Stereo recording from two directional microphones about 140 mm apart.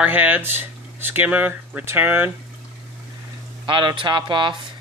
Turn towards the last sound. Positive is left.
turn(degrees=-35)  # may be behind; listen again after turning